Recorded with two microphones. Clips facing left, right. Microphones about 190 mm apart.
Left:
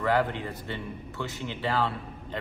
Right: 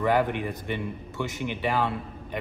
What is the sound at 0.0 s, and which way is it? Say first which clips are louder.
A man's voice: right 2 dB; 15° right (ahead or behind).